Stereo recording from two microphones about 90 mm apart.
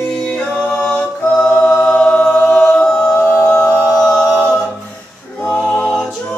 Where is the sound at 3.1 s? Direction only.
25° left (ahead or behind).